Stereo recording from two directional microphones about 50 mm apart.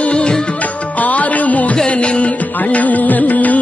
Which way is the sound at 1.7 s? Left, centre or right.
Left.